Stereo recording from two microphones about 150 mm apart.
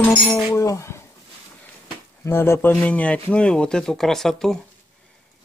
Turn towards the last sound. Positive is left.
turn(degrees=0)  # may be behind; listen again after turning